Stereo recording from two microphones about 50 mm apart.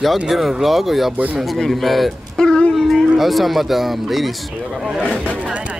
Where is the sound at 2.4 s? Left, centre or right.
Centre.